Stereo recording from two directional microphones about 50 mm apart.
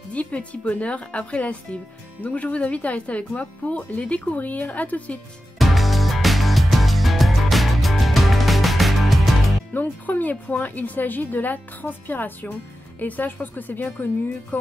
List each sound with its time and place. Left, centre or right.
0.1 s speech: left
5.6 s music: centre
9.8 s a woman's voice: left